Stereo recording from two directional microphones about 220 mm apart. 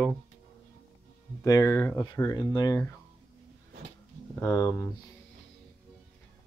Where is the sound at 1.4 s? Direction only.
15° left (ahead or behind).